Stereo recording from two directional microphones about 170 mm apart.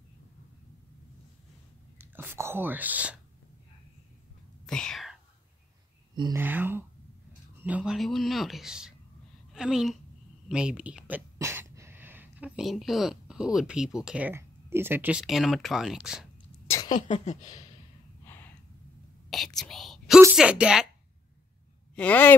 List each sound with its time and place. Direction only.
2.0 s speech: 10° right (ahead or behind)
4.6 s whispering: 5° left (ahead or behind)
6.3 s a man's voice: 10° right (ahead or behind)
16.6 s a sound: 15° left (ahead or behind)
16.9 s speech: 45° left (ahead or behind)
18.2 s a sound: 10° left (ahead or behind)
19.3 s whispering: centre (ahead or behind)
20.3 s a man's voice: 5° right (ahead or behind)
21.9 s speech: 10° left (ahead or behind)